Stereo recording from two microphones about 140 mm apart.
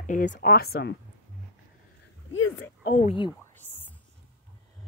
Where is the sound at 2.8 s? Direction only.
70° left (ahead or behind).